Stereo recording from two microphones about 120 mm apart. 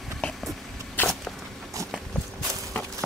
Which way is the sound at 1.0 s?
15° left (ahead or behind).